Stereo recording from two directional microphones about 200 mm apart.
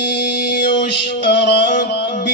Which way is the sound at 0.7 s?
60° left (ahead or behind).